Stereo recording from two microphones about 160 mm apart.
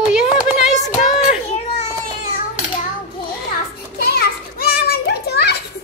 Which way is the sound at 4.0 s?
75° left (ahead or behind).